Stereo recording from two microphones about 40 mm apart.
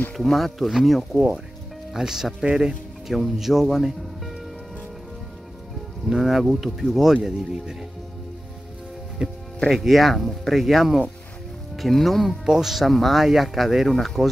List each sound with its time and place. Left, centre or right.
0.2 s speech: centre
1.1 s speech: right
2.0 s speech: centre
3.1 s speech: centre
6.0 s speech: centre
7.2 s speech: centre
9.2 s speech: right
9.7 s speech: centre
12.4 s speech: centre